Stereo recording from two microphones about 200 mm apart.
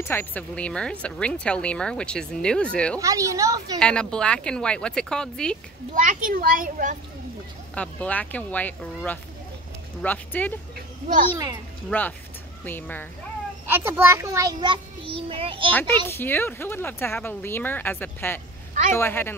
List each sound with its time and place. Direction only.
0.0 s speech: 10° left (ahead or behind)
3.0 s a woman's voice: 15° right (ahead or behind)
3.8 s speech: 5° left (ahead or behind)
5.9 s a child's voice: 40° right (ahead or behind)
7.7 s speech: 5° left (ahead or behind)
11.9 s speech: 10° left (ahead or behind)
13.7 s a child's voice: 10° right (ahead or behind); by 15.7 s 25° right (ahead or behind)
15.7 s speech: 10° left (ahead or behind)